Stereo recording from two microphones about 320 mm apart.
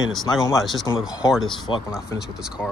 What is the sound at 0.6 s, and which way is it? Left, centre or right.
Speech, centre.